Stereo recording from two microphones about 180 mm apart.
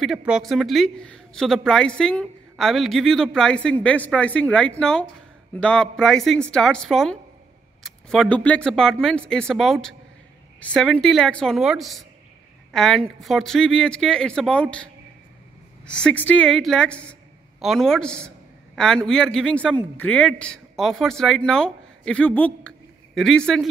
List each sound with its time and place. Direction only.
0.0 s speech: 5° right (ahead or behind)
15.8 s a woman's voice: 5° left (ahead or behind)